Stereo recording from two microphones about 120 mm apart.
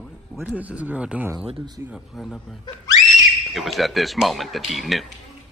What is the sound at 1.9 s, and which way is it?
A man's voice, centre (ahead or behind).